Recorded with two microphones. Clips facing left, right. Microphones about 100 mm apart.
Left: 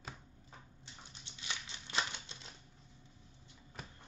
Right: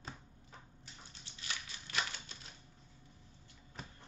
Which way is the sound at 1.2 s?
25° left (ahead or behind).